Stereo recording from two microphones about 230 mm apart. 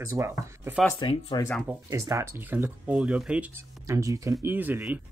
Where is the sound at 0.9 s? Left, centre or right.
Left.